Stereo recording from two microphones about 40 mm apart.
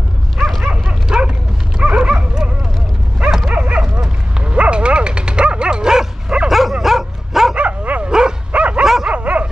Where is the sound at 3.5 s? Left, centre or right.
Right; by 6.1 s centre.